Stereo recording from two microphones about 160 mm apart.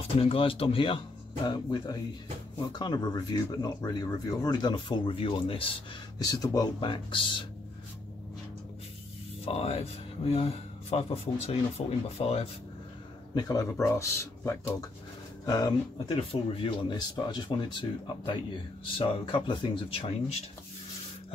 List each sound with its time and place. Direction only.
0.2 s speech: 35° left (ahead or behind)
6.1 s speech: 25° left (ahead or behind)
9.4 s speech: 40° left (ahead or behind)
13.3 s speech: 25° left (ahead or behind)
16.3 s speech: 35° left (ahead or behind)